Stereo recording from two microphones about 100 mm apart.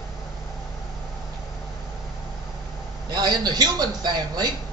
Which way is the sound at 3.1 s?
45° right (ahead or behind).